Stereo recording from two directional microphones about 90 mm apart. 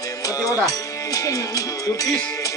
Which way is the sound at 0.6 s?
40° left (ahead or behind).